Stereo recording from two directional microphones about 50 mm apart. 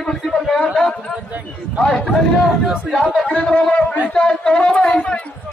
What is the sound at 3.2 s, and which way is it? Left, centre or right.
Speech, left.